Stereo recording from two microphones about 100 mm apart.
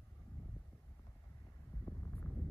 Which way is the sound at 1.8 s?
20° left (ahead or behind).